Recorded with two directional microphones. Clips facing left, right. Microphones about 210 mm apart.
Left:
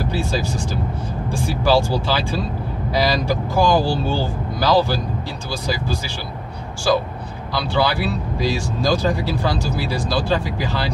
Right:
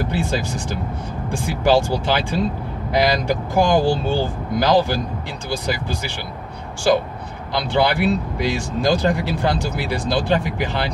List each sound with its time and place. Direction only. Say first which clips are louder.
0.1 s speech: even; 15° right (ahead or behind)
7.5 s speech: right 2 dB; 20° right (ahead or behind)